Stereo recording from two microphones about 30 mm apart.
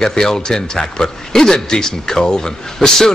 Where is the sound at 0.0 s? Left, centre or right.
Centre.